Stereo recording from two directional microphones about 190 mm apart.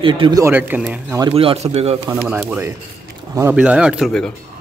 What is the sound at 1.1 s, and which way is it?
Speech, 25° right (ahead or behind).